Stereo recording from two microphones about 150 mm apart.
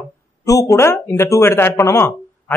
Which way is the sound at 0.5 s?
20° left (ahead or behind).